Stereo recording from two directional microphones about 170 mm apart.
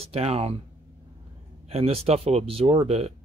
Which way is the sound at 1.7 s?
35° right (ahead or behind).